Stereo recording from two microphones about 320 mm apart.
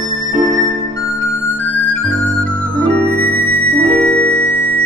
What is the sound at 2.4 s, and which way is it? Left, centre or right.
Music, centre.